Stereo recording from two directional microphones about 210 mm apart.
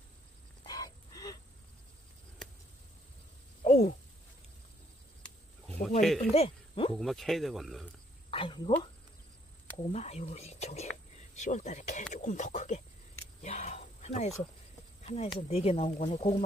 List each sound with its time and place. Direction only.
0.7 s wild animals: 20° left (ahead or behind)
3.6 s a sound: 30° left (ahead or behind)
5.8 s a sound: centre (ahead or behind)
6.1 s speech: 30° left (ahead or behind)
6.9 s speech: centre (ahead or behind)
8.3 s a sound: 25° left (ahead or behind)
9.8 s speech: 30° left (ahead or behind)
13.4 s cricket: 30° left (ahead or behind)
15.1 s speech: 30° left (ahead or behind)